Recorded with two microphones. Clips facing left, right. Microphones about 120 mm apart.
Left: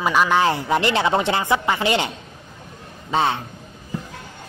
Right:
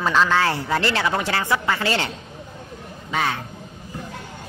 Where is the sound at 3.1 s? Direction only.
25° left (ahead or behind).